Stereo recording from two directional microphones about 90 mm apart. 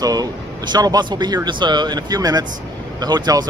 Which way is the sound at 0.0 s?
45° right (ahead or behind).